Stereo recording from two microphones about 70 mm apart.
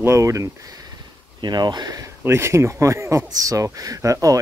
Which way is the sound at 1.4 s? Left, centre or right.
Right.